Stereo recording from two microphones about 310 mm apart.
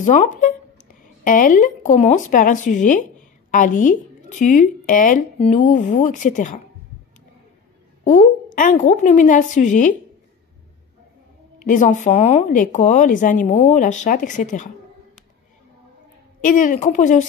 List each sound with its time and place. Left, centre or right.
0.0 s speech: left
8.0 s speech: left
11.6 s speech: left
16.4 s speech: left